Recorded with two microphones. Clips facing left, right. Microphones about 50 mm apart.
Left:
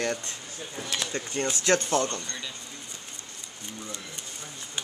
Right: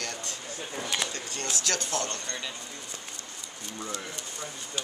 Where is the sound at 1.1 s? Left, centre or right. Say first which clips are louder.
Left 5 dB; left.